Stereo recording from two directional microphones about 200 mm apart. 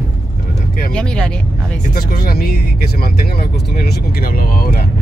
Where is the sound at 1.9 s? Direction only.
50° left (ahead or behind).